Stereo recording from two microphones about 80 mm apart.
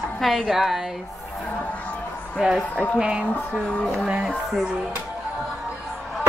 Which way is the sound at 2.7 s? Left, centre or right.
Centre.